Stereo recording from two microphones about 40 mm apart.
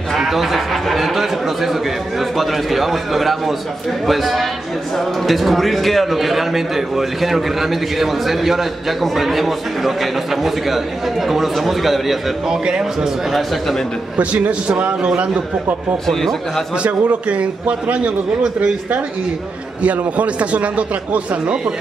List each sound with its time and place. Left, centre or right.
0.1 s a man's voice: centre
12.4 s speech: centre
13.3 s a man's voice: centre
14.1 s a man's voice: right
16.1 s speech: centre
16.8 s a man's voice: right
19.8 s a man's voice: right